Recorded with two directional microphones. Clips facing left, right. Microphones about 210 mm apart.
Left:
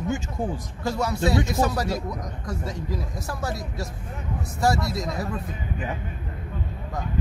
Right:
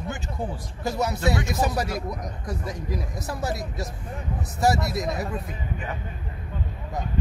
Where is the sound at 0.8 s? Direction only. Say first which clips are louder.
Left 1 dB; 20° right (ahead or behind).